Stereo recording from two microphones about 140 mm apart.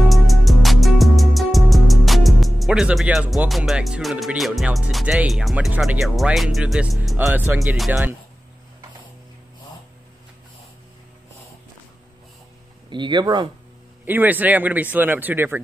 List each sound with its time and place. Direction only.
0.1 s music: centre (ahead or behind)
5.8 s speech: centre (ahead or behind)
7.5 s speech: centre (ahead or behind)
7.9 s speech: 15° right (ahead or behind)
12.9 s speech: 35° right (ahead or behind)
14.0 s speech: 15° right (ahead or behind)